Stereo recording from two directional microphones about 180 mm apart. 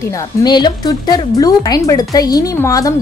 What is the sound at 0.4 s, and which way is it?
A woman's voice, 25° left (ahead or behind).